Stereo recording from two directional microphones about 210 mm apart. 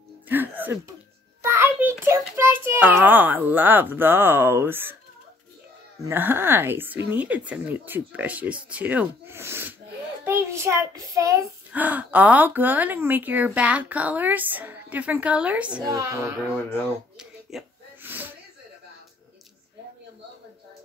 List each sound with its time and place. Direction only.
0.3 s music: 10° right (ahead or behind)
1.4 s a child's voice: 10° right (ahead or behind)
6.0 s a child's voice: 10° right (ahead or behind)
15.8 s a child's voice: 15° right (ahead or behind)
17.2 s wheeze: centre (ahead or behind)